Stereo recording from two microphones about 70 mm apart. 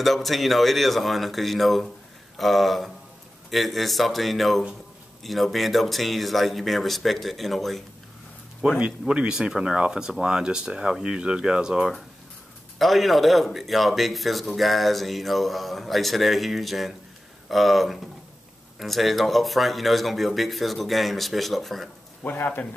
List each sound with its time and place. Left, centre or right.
0.0 s speech: centre
8.7 s speech: centre
12.7 s speech: centre
22.2 s speech: left